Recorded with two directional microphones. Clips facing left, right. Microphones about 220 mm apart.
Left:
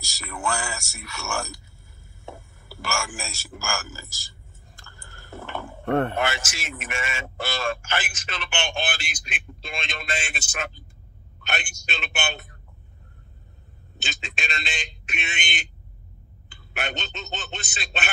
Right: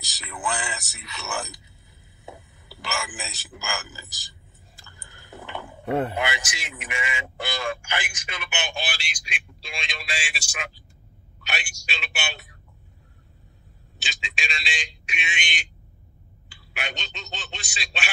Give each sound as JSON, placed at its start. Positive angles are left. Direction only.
{"t": 0.0, "sound": "a man's voice", "side_deg": -20}
{"t": 14.0, "sound": "a man's voice", "side_deg": 0}
{"t": 16.7, "sound": "a man's voice", "side_deg": 0}